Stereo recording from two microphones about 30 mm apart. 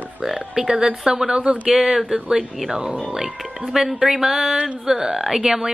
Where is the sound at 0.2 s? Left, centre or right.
Centre.